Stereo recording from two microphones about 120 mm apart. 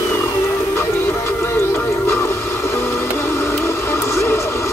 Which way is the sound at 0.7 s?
20° left (ahead or behind).